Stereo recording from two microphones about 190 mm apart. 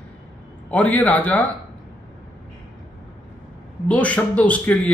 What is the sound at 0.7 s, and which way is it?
Speech, 10° left (ahead or behind).